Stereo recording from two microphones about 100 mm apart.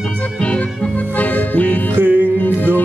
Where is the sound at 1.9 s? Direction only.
20° right (ahead or behind).